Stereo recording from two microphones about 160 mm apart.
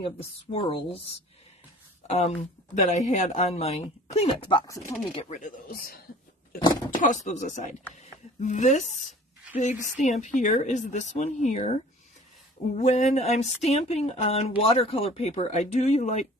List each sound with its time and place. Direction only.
0.0 s speech: 35° left (ahead or behind)
2.0 s speech: 40° left (ahead or behind); by 4.9 s 20° left (ahead or behind)
5.1 s speech: 50° left (ahead or behind); by 5.9 s 65° left (ahead or behind)
7.0 s speech: 50° left (ahead or behind)
9.0 s a sound: 5° right (ahead or behind)
9.6 s speech: 50° left (ahead or behind)